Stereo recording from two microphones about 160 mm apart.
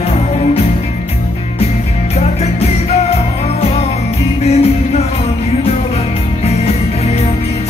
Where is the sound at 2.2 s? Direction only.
40° left (ahead or behind).